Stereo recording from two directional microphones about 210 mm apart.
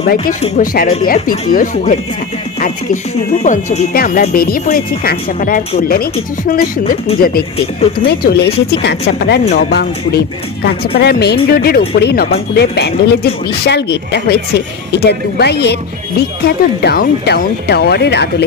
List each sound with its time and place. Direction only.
0.0 s speech: 45° left (ahead or behind)
3.4 s speech: 40° left (ahead or behind)
7.2 s speech: 45° left (ahead or behind)